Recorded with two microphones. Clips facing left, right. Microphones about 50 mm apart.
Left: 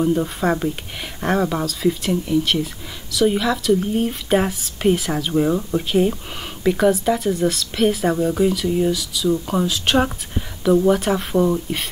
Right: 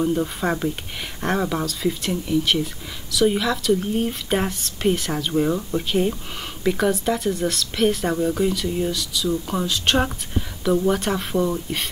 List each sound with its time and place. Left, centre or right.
0.0 s speech: centre